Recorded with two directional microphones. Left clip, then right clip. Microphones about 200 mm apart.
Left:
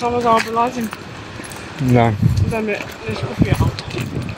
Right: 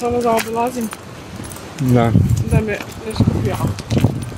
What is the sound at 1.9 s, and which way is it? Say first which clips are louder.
Speech: left 1 dB; 10° right (ahead or behind).